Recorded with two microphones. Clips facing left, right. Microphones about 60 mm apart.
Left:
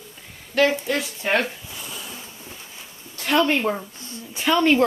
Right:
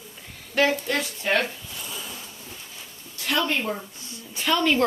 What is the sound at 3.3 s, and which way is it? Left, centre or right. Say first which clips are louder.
Speech: left 5 dB; left.